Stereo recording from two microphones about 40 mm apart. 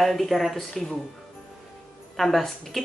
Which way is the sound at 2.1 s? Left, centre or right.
Centre.